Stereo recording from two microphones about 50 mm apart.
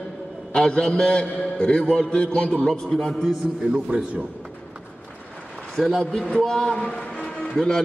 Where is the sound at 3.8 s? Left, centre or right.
Right.